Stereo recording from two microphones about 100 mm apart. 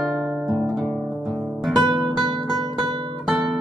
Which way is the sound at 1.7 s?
50° right (ahead or behind).